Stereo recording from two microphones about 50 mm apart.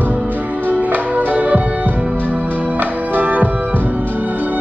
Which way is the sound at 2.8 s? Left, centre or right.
Right.